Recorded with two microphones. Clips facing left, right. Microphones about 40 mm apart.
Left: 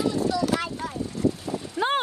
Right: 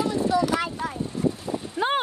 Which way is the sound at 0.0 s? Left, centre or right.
Centre.